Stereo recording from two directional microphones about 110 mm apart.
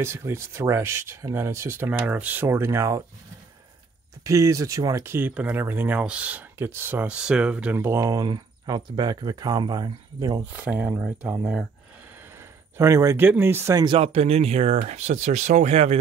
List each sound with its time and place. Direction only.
0.0 s speech: 25° right (ahead or behind)
1.9 s speech: 10° right (ahead or behind)
4.2 s speech: 30° right (ahead or behind)
5.1 s speech: 15° right (ahead or behind); by 10.4 s 40° right (ahead or behind)
10.4 s speech: 15° right (ahead or behind)
12.7 s speech: 25° right (ahead or behind)
13.9 s speech: 70° right (ahead or behind); by 16.0 s 90° right